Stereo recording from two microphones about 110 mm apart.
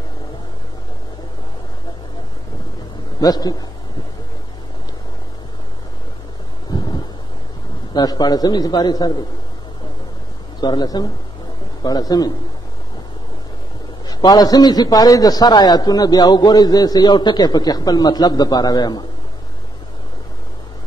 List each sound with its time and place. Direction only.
3.2 s a man's voice: 35° left (ahead or behind)
6.7 s thunder: 40° left (ahead or behind)
7.9 s a man's voice: 40° left (ahead or behind)
10.6 s a man's voice: 40° left (ahead or behind)
14.0 s a man's voice: 40° left (ahead or behind)